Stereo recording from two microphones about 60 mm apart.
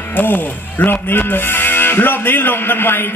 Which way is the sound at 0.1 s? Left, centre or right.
Left.